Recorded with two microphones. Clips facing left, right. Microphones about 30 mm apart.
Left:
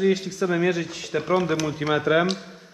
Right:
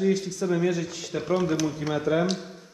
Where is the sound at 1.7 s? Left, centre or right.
Left.